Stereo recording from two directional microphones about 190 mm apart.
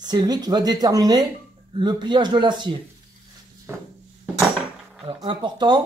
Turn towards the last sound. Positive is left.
turn(degrees=-20)  # may be behind; listen again after turning